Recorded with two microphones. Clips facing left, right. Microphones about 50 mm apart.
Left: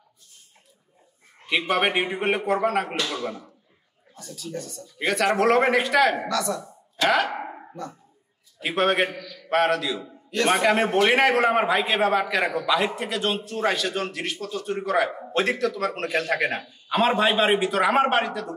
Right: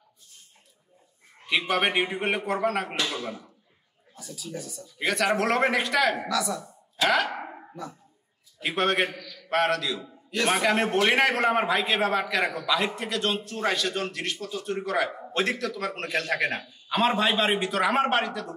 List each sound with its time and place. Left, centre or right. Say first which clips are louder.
1.7 s a man's voice: left 3 dB; centre
3.0 s a man's voice: left 2 dB; centre